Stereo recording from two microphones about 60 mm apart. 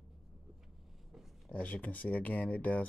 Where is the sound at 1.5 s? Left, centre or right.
Left.